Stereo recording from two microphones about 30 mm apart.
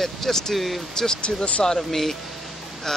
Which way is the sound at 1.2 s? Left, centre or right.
Left.